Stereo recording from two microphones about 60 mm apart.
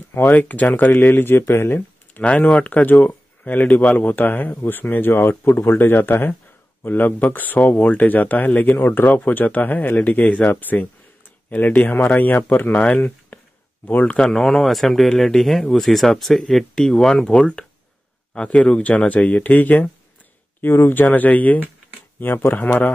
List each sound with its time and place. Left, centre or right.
0.1 s speech: left
1.8 s speech: left
8.5 s speech: centre
8.7 s speech: left
14.2 s a man's voice: centre; by 22.6 s left